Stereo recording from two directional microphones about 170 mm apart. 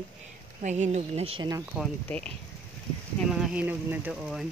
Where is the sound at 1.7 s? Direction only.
5° right (ahead or behind).